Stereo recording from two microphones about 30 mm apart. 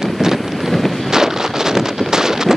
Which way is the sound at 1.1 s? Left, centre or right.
Centre.